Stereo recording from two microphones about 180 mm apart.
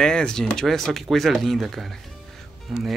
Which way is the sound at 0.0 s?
5° left (ahead or behind).